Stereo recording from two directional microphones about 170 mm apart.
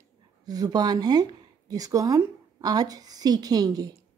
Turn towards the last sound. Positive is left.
turn(degrees=-20)  # may be behind; listen again after turning